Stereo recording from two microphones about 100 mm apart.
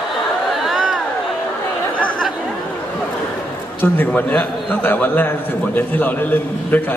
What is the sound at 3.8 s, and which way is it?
A man's voice, 20° left (ahead or behind).